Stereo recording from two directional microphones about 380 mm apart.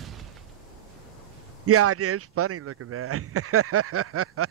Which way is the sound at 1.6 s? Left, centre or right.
Right.